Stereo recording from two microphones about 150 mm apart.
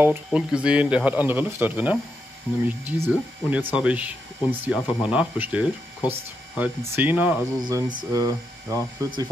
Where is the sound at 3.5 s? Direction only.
10° right (ahead or behind).